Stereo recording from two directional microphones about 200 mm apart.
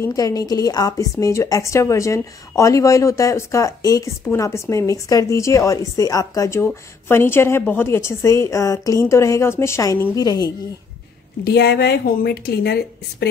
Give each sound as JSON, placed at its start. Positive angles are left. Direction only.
{"t": 0.0, "sound": "a woman's voice", "side_deg": 20}
{"t": 11.4, "sound": "a woman's voice", "side_deg": 55}